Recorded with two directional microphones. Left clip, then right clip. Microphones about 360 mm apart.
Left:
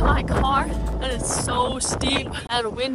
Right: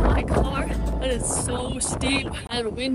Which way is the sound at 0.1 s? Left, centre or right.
Centre.